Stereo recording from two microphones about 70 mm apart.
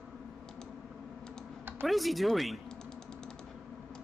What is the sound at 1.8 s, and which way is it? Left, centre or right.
Speech, centre.